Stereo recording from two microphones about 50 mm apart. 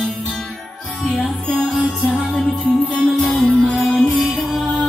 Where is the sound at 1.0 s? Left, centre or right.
Centre.